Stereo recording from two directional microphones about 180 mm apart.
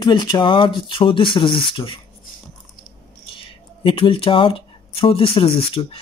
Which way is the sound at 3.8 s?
30° left (ahead or behind).